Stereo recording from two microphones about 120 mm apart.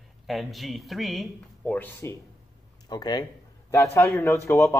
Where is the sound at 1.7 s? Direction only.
15° left (ahead or behind).